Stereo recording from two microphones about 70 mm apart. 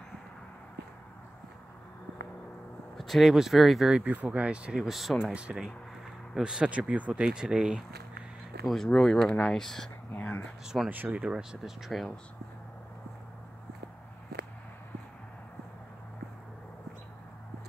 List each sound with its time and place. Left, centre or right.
3.0 s speech: centre
4.0 s speech: right
4.7 s speech: centre
5.3 s speech: centre
8.6 s speech: centre
10.1 s a sound: left
10.9 s speech: right; by 12.1 s centre